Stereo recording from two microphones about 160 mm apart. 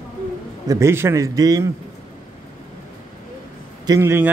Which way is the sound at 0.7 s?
15° right (ahead or behind).